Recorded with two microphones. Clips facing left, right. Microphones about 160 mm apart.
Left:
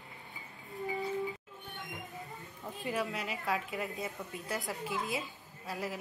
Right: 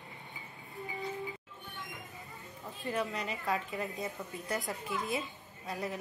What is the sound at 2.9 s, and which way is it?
A woman's voice, centre (ahead or behind).